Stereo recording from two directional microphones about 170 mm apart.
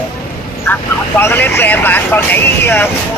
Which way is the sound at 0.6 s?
10° left (ahead or behind).